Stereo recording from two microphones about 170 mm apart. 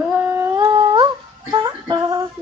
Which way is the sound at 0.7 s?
30° right (ahead or behind).